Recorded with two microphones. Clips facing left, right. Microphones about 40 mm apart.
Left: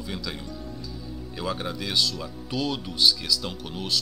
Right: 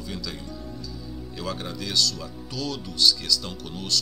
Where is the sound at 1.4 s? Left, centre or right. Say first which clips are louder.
Left 2 dB; centre.